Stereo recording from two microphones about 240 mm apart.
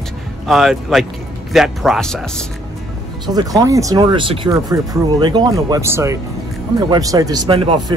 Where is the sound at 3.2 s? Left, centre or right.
Centre.